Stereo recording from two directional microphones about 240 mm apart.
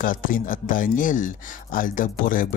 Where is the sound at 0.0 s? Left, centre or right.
Left.